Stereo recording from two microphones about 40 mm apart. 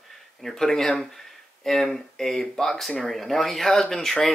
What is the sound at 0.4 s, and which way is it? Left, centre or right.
Speech, centre.